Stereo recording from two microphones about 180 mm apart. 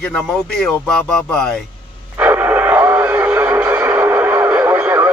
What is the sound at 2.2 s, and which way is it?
Radio, 10° right (ahead or behind).